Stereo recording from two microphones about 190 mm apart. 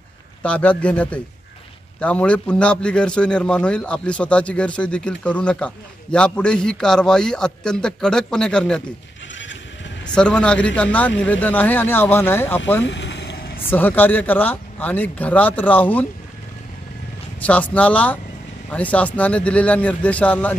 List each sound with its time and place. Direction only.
0.4 s a man's voice: 5° left (ahead or behind)
10.1 s speech: 5° left (ahead or behind)
12.8 s vehicle: 70° left (ahead or behind)
13.7 s speech: 10° left (ahead or behind)
17.4 s speech: 5° left (ahead or behind)